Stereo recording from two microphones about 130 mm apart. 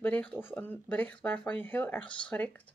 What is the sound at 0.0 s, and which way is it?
Speech, 10° left (ahead or behind).